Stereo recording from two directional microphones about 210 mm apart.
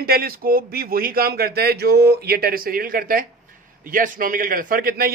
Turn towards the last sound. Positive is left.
turn(degrees=-45)  # may be behind; listen again after turning